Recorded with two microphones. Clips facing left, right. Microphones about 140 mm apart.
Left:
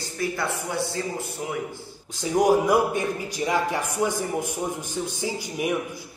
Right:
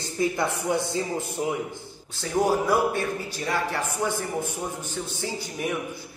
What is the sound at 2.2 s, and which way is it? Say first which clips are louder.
Speech: left 4 dB; 15° left (ahead or behind).